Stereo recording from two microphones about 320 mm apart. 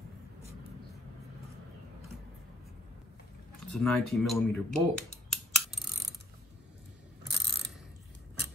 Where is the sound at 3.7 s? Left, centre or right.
Centre.